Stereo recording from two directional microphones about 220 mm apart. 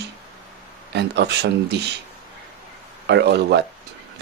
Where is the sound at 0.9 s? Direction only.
50° right (ahead or behind).